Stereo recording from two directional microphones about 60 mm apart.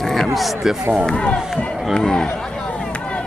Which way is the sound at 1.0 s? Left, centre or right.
Centre.